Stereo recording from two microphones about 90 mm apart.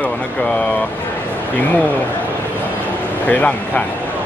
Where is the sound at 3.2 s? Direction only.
15° left (ahead or behind).